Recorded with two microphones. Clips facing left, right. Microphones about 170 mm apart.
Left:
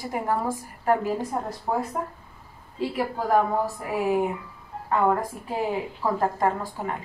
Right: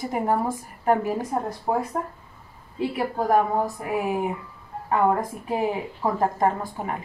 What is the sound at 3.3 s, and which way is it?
Speech, 20° right (ahead or behind).